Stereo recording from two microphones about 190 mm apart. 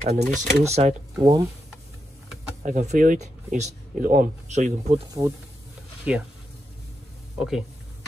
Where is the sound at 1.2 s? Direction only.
15° right (ahead or behind).